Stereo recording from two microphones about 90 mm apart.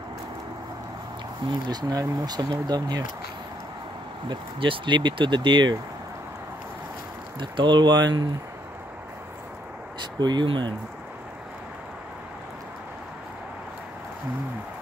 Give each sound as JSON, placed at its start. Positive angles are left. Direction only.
{"t": 1.7, "sound": "speech", "side_deg": -50}
{"t": 4.3, "sound": "speech", "side_deg": -65}
{"t": 7.3, "sound": "speech", "side_deg": -60}
{"t": 9.9, "sound": "speech", "side_deg": -55}